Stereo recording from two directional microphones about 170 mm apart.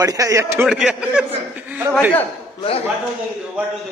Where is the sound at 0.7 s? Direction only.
5° right (ahead or behind).